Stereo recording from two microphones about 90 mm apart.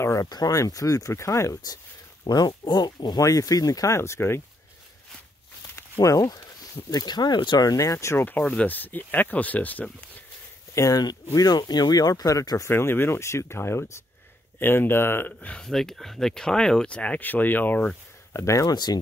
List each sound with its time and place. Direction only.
0.0 s speech: 35° left (ahead or behind)
2.2 s speech: 50° left (ahead or behind)
3.3 s speech: 40° left (ahead or behind)
5.8 s speech: 35° left (ahead or behind)
8.4 s speech: 15° left (ahead or behind)
10.7 s speech: 35° left (ahead or behind)
12.6 s speech: 25° left (ahead or behind)
15.4 s speech: 5° left (ahead or behind)
18.3 s speech: 35° left (ahead or behind)